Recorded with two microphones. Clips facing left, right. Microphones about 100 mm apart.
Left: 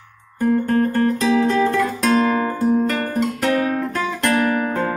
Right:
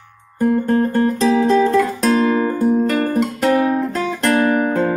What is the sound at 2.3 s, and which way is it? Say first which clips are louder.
Music: right 2 dB; 15° right (ahead or behind).